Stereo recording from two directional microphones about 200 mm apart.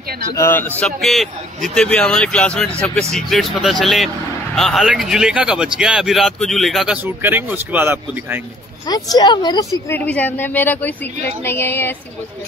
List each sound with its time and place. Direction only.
0.4 s a woman's voice: 10° left (ahead or behind); by 8.4 s 10° right (ahead or behind)
8.8 s a woman's voice: 20° left (ahead or behind)
9.8 s a woman's voice: 10° left (ahead or behind)